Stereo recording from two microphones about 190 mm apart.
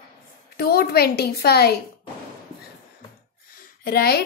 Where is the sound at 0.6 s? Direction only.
55° left (ahead or behind).